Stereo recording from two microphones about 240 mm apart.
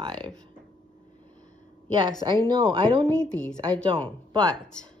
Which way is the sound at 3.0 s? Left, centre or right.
Centre.